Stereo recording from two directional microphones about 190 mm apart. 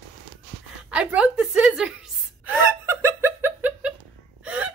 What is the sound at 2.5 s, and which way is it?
Laughter, 10° right (ahead or behind).